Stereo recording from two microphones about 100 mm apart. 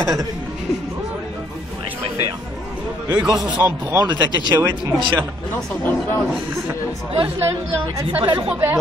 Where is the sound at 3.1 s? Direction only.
15° right (ahead or behind).